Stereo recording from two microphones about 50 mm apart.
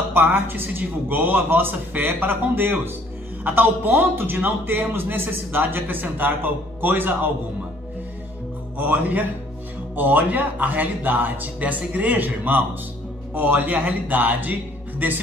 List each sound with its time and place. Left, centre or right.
0.3 s a man's voice: right
8.7 s a man's voice: right